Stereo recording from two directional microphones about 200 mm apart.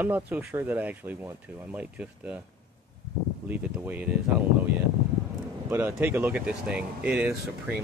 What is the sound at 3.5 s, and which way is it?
Speech, 10° right (ahead or behind).